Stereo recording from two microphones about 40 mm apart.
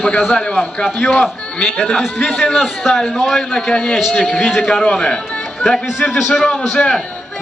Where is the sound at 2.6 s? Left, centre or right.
Centre.